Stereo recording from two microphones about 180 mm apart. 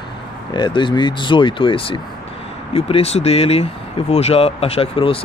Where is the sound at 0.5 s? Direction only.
25° left (ahead or behind).